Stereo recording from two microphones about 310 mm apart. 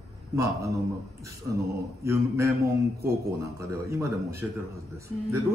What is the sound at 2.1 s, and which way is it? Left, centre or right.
Speech, centre.